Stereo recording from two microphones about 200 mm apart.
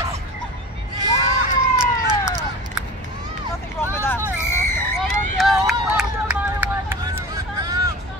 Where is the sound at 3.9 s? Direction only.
10° left (ahead or behind).